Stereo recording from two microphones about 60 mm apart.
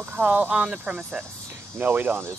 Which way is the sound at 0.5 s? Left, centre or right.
Centre.